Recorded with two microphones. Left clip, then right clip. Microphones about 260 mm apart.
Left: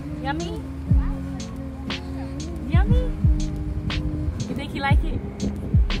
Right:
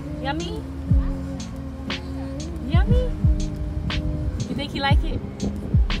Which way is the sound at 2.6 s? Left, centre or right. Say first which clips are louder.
Right 2 dB; centre.